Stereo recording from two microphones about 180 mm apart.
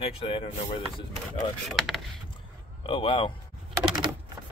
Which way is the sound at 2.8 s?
30° left (ahead or behind).